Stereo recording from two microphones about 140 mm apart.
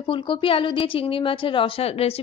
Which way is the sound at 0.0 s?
40° left (ahead or behind).